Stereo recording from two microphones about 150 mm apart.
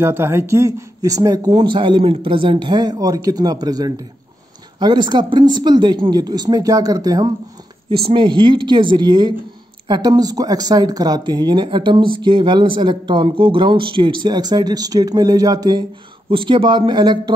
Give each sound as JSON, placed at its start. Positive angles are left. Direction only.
{"t": 0.0, "sound": "speech", "side_deg": -15}
{"t": 16.3, "sound": "speech", "side_deg": -35}